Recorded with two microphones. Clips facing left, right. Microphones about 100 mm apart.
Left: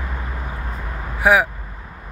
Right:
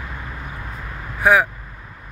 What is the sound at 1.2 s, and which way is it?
Speech, 20° left (ahead or behind).